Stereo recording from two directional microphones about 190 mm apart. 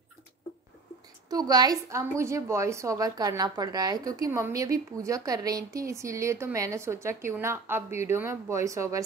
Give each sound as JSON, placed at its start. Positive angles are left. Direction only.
{"t": 1.3, "sound": "a woman's voice", "side_deg": -20}